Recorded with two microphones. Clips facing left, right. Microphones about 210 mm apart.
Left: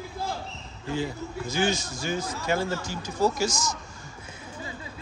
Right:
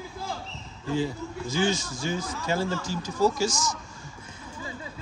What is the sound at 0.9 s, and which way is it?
A man's voice, 30° right (ahead or behind).